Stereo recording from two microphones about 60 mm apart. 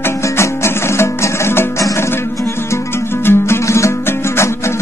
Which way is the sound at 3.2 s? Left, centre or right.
Left.